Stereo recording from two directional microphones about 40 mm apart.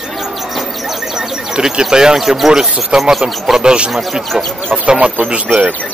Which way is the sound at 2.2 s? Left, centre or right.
Centre.